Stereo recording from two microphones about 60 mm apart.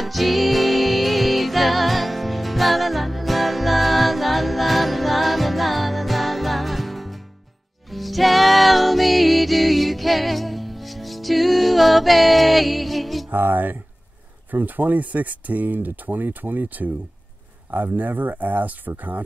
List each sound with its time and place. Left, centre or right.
0.0 s music: centre
13.3 s speech: right